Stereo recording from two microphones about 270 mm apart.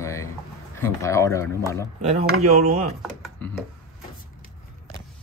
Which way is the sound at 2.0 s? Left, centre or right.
Right.